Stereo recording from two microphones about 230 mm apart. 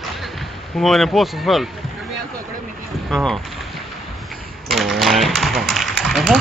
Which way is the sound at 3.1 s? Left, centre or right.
Centre.